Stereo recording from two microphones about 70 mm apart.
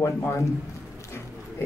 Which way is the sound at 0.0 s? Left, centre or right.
Left.